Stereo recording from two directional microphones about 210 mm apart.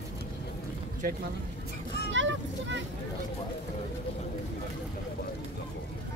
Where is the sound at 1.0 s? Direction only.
45° right (ahead or behind).